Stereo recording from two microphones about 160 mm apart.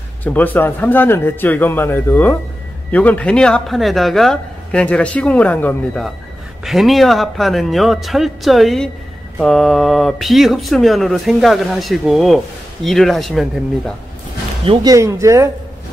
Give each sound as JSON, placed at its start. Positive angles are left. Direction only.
{"t": 0.2, "sound": "speech", "side_deg": 10}
{"t": 14.6, "sound": "speech", "side_deg": -35}
{"t": 14.9, "sound": "speech", "side_deg": -20}